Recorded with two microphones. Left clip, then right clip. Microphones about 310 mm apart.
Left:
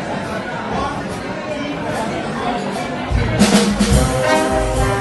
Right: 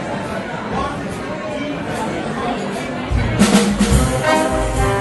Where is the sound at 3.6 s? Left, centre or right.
Centre.